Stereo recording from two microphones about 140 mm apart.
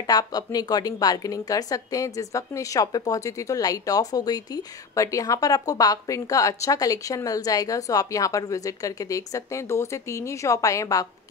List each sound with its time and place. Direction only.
0.0 s a woman's voice: 25° left (ahead or behind)